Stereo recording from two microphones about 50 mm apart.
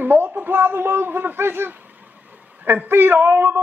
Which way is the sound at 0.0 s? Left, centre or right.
Right.